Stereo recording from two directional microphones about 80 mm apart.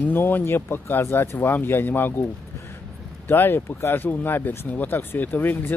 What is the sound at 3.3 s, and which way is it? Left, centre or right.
Speech, left.